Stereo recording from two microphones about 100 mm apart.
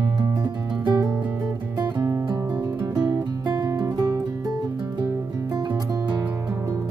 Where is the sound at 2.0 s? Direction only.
30° right (ahead or behind).